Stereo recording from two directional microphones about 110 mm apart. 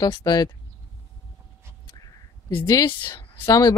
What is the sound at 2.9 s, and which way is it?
Speech, 45° left (ahead or behind).